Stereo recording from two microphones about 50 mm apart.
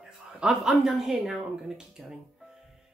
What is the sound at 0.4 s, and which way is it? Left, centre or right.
Speech, centre.